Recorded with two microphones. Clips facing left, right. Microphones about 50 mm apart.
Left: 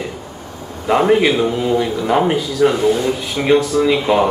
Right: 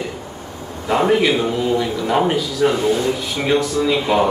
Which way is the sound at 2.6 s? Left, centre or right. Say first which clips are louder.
Left 3 dB; centre.